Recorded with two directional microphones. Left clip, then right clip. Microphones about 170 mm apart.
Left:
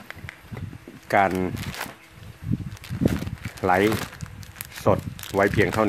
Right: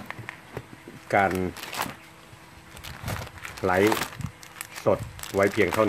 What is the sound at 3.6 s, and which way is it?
Speech, 70° left (ahead or behind).